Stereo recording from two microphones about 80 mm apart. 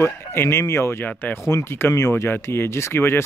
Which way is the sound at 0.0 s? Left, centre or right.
Left.